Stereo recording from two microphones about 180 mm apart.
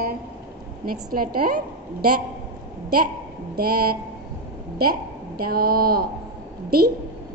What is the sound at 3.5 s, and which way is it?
Speech, 55° right (ahead or behind).